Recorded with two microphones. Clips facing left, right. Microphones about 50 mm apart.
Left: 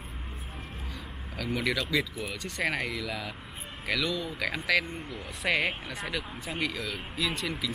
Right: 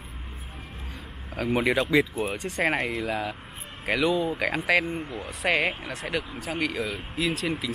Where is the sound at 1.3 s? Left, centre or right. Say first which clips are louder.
Right 6 dB; right.